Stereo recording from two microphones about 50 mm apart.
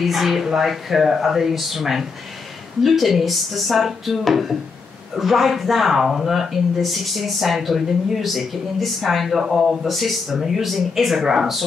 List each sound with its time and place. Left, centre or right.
0.0 s speech: centre